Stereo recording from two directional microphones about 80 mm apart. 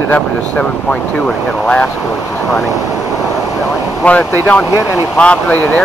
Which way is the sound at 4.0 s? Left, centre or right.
Centre.